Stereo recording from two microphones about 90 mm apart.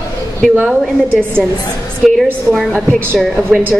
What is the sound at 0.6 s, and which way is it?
Speech, 15° right (ahead or behind).